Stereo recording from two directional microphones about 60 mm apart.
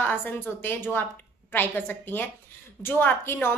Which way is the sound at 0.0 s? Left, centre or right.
Left.